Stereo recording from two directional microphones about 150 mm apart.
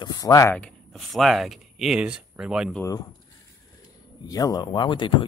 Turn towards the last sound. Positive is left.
turn(degrees=30)  # may be behind; listen again after turning